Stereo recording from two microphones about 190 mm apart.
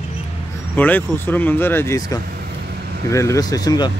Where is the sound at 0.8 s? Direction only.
10° left (ahead or behind).